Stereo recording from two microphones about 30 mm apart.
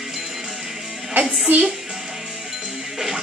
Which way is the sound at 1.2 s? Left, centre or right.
Right.